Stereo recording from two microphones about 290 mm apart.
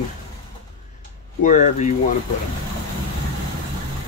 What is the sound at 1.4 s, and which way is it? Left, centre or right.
Speech, left.